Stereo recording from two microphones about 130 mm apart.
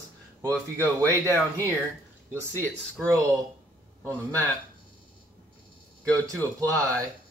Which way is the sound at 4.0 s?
20° right (ahead or behind).